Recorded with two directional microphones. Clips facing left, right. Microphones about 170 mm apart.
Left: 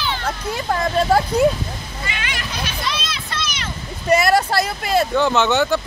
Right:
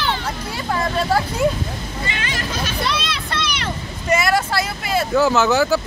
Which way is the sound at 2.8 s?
65° right (ahead or behind).